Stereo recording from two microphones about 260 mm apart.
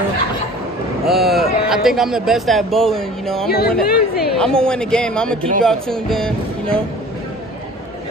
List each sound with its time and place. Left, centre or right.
1.0 s a sound: centre
1.7 s speech: centre
3.4 s a woman's voice: left
4.4 s speech: centre